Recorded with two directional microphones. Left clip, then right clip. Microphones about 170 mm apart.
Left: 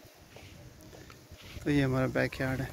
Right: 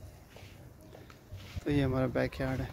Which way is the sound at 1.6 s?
10° right (ahead or behind).